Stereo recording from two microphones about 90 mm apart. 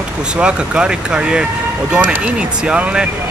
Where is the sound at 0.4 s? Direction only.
10° right (ahead or behind).